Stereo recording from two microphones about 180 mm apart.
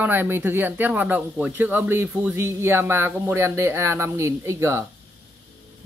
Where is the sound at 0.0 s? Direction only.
10° right (ahead or behind).